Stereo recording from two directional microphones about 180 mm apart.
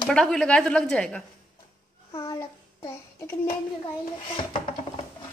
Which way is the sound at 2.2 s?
15° left (ahead or behind).